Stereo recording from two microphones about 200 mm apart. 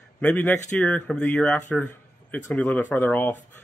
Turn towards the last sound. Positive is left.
turn(degrees=10)  # may be behind; listen again after turning